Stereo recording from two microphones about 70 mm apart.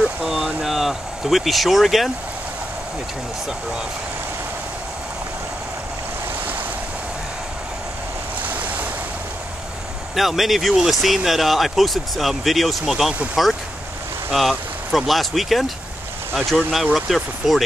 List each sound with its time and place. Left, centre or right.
0.0 s a sound: centre
8.4 s waves: right
10.1 s speech: centre